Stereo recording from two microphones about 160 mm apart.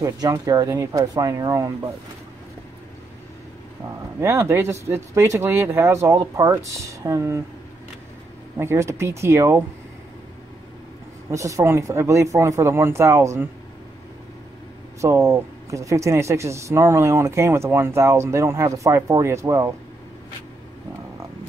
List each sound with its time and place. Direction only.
0.0 s speech: 20° right (ahead or behind)
4.2 s speech: 15° right (ahead or behind)
8.5 s speech: 15° right (ahead or behind)
11.2 s speech: 20° right (ahead or behind)
15.0 s speech: 20° right (ahead or behind)